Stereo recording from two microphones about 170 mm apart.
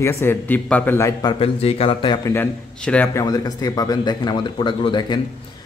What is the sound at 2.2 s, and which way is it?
A man's voice, 10° left (ahead or behind).